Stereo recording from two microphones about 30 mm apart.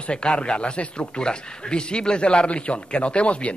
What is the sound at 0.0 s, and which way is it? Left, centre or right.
Speech, left.